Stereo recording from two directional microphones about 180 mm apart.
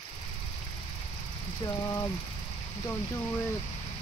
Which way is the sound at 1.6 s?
15° left (ahead or behind).